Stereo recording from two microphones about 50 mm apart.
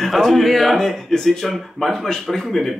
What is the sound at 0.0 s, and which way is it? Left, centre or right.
Speech, centre.